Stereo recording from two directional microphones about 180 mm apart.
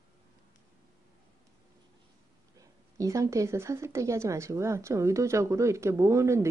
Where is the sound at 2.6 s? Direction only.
20° right (ahead or behind).